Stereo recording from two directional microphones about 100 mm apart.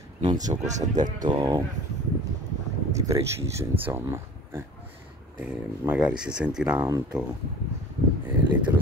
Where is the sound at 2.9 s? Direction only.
30° right (ahead or behind).